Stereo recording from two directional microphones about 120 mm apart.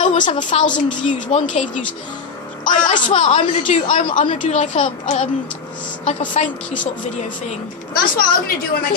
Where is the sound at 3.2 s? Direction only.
70° left (ahead or behind).